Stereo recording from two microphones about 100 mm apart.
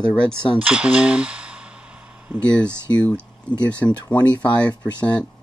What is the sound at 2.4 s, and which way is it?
Speech, 10° left (ahead or behind).